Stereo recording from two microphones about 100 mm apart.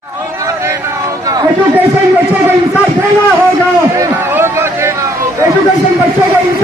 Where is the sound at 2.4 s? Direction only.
20° right (ahead or behind).